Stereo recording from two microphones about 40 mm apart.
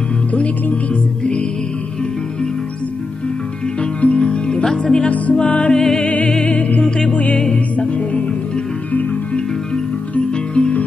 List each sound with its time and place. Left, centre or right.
0.3 s speech: left
4.0 s music: left
4.6 s music: centre
5.0 s speech: left
5.3 s music: left
5.8 s music: centre
6.0 s music: left
7.3 s music: centre
10.1 s music: left